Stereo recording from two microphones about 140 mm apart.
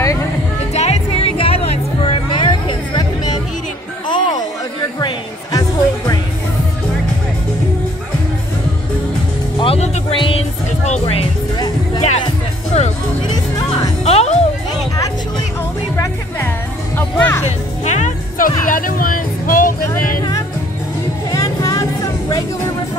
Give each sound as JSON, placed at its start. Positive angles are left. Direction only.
{"t": 0.7, "sound": "music", "side_deg": 50}
{"t": 9.6, "sound": "music", "side_deg": 45}
{"t": 10.1, "sound": "music", "side_deg": 40}
{"t": 11.5, "sound": "music", "side_deg": 30}
{"t": 12.7, "sound": "music", "side_deg": 50}
{"t": 16.9, "sound": "music", "side_deg": 15}
{"t": 17.5, "sound": "music", "side_deg": 55}
{"t": 18.7, "sound": "vehicle", "side_deg": 80}
{"t": 19.9, "sound": "music", "side_deg": 25}